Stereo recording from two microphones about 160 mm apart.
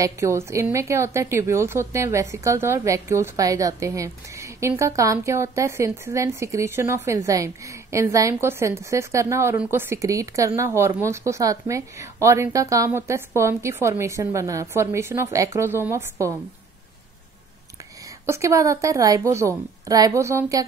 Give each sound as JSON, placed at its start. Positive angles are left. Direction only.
{"t": 0.0, "sound": "a woman's voice", "side_deg": -20}
{"t": 18.2, "sound": "a woman's voice", "side_deg": -20}